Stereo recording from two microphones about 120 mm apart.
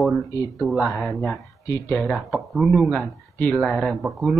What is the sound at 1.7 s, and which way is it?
Speech, 25° left (ahead or behind).